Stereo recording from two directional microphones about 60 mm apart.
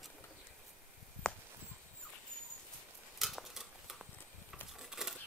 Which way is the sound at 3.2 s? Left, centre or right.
Centre.